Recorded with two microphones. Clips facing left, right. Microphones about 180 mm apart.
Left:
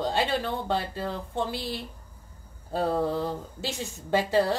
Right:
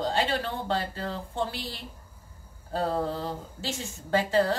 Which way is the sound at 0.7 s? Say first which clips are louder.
Left 1 dB; 15° left (ahead or behind).